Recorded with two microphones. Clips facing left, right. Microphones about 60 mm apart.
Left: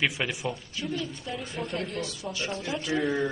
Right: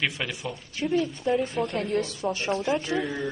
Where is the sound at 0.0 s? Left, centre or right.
Centre.